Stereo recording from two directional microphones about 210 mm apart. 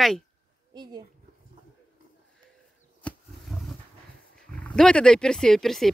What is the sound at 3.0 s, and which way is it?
Roaring cats, centre (ahead or behind).